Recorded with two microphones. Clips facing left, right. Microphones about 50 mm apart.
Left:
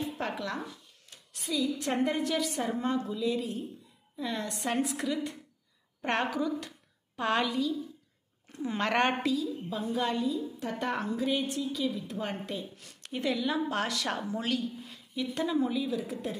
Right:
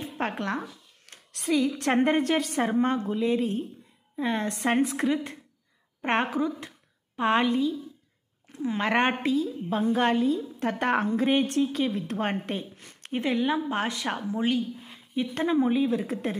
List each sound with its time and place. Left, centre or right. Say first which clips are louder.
0.0 s speech: right 3 dB; right
1.0 s a sound: right 6 dB; right
1.5 s a woman's voice: right 6 dB; right
8.5 s speech: right 4 dB; centre
9.2 s a woman's voice: right 4 dB; right
9.7 s a woman's voice: right 8 dB; right